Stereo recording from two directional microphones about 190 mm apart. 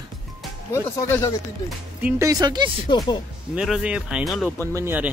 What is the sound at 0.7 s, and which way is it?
Speech, 15° left (ahead or behind).